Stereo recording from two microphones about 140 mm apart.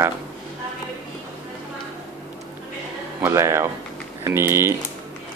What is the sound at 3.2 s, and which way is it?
Speech, 20° right (ahead or behind).